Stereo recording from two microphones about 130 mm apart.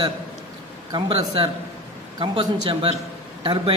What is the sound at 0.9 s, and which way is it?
A man's voice, 40° right (ahead or behind).